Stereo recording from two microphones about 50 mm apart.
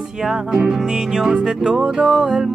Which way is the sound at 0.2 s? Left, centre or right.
Centre.